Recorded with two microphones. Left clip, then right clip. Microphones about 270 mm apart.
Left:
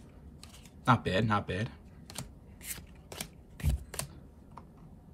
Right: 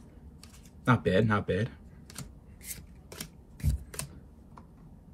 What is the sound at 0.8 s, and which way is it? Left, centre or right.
Speech, centre.